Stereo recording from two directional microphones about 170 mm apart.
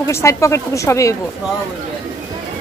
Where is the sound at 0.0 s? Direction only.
15° left (ahead or behind).